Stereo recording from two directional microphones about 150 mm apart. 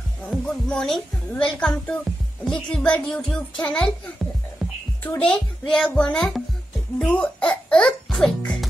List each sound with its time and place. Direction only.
0.3 s a child's voice: 5° left (ahead or behind)